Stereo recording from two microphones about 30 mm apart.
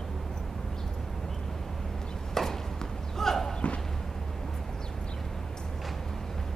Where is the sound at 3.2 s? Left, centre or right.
Centre.